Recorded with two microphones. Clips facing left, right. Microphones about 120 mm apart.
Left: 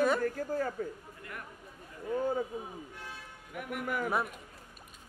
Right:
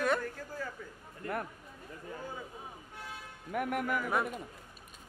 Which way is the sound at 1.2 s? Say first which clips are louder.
Right 10 dB; 35° right (ahead or behind).